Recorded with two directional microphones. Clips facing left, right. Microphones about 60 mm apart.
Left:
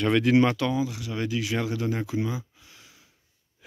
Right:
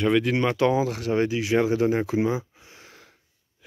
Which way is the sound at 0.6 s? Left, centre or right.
Right.